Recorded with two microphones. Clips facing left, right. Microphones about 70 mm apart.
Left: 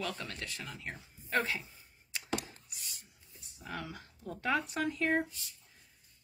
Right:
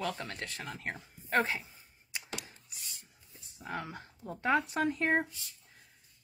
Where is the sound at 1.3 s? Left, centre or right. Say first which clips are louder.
Right 3 dB; right.